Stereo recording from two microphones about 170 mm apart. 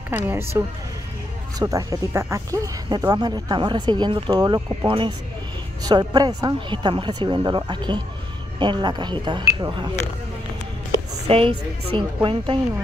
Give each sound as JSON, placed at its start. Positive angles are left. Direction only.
{"t": 0.1, "sound": "speech", "side_deg": -15}
{"t": 1.6, "sound": "speech", "side_deg": -20}
{"t": 11.2, "sound": "speech", "side_deg": -35}